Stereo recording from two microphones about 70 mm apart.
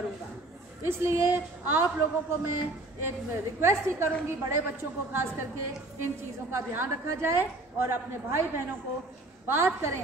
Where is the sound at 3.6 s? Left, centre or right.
Right.